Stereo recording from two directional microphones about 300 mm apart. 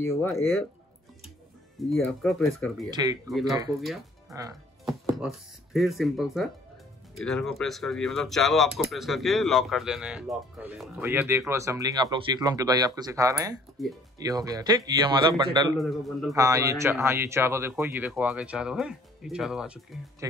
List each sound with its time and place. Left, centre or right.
0.0 s speech: centre
1.9 s speech: centre
4.3 s speech: centre
4.8 s speech: centre
13.8 s speech: centre
14.1 s speech: centre
15.8 s speech: centre
16.3 s speech: centre